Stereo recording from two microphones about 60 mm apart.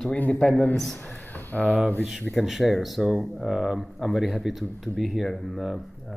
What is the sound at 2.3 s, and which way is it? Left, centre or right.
Speech, centre.